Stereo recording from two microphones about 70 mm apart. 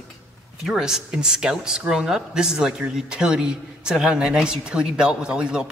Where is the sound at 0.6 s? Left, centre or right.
Centre.